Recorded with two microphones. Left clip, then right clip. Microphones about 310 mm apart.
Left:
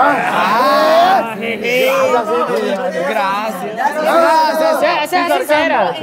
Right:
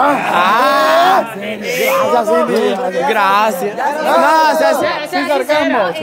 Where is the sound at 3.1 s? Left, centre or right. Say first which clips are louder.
Right 8 dB; centre.